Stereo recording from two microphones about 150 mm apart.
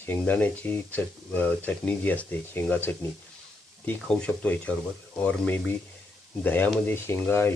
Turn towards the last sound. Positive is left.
turn(degrees=15)  # may be behind; listen again after turning